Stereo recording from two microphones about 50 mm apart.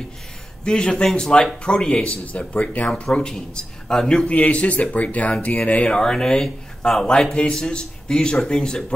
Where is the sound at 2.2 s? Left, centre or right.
Left.